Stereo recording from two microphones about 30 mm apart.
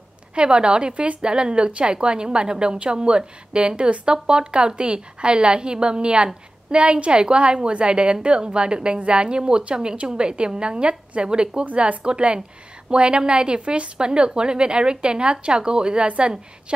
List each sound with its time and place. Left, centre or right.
0.3 s a woman's voice: right
2.0 s a woman's voice: right
13.9 s a woman's voice: right